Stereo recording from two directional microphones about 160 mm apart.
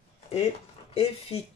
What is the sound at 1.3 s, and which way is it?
Speech, 40° left (ahead or behind).